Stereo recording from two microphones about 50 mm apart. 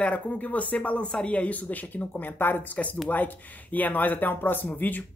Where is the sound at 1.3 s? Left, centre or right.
Left.